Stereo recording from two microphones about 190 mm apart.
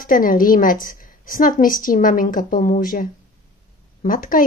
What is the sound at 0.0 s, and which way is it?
Speech, 45° left (ahead or behind).